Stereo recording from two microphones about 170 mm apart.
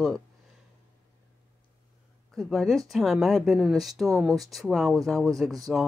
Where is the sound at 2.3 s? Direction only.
Centre (ahead or behind).